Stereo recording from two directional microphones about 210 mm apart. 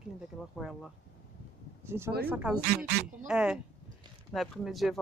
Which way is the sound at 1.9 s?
10° right (ahead or behind).